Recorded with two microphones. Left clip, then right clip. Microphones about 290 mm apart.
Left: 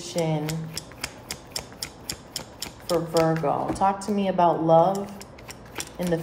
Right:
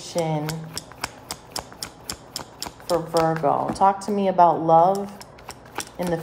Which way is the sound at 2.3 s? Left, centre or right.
Right.